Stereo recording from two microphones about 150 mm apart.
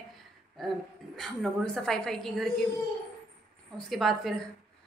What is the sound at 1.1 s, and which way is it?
A woman's voice, centre (ahead or behind).